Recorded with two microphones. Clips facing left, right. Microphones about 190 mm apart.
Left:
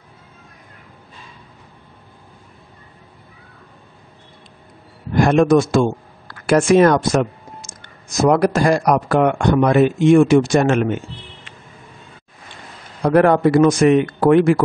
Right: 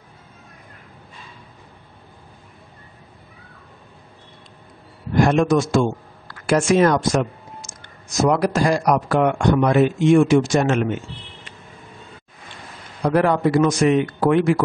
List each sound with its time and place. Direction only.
5.2 s speech: 55° left (ahead or behind)
13.0 s a man's voice: 55° left (ahead or behind)